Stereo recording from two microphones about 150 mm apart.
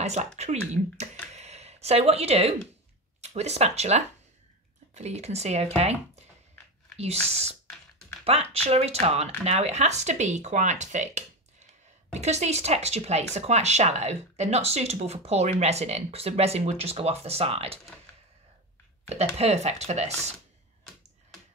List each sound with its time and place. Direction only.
0.0 s speech: 50° right (ahead or behind)
1.3 s a sound: 45° right (ahead or behind)
3.2 s speech: 45° right (ahead or behind)
19.0 s speech: 45° right (ahead or behind)